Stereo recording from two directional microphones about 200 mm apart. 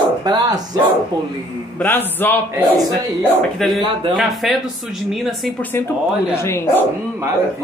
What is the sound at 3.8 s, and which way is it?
Speech, 25° right (ahead or behind).